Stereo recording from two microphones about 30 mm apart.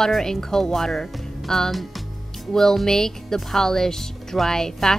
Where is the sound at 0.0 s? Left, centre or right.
Centre.